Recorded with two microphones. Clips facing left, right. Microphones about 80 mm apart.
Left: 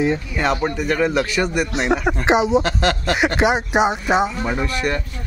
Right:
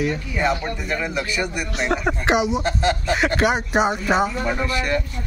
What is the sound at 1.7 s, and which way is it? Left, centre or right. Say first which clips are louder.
Speech: left 3 dB; left.